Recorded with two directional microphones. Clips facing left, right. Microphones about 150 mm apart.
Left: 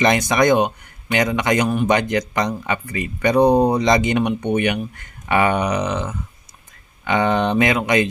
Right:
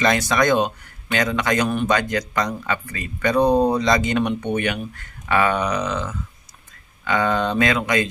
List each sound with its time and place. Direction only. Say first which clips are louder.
0.0 s a man's voice: left 3 dB; 20° left (ahead or behind)